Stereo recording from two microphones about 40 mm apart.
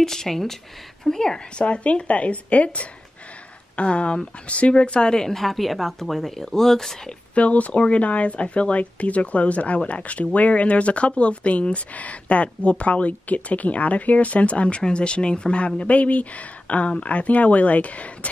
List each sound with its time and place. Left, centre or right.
0.0 s a woman's voice: centre
1.7 s a woman's voice: left; by 7.0 s centre
7.3 s speech: left